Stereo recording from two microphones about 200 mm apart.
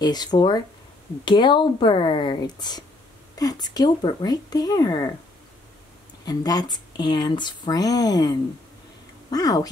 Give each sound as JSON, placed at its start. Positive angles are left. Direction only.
{"t": 0.0, "sound": "speech", "side_deg": 20}
{"t": 6.2, "sound": "speech", "side_deg": 20}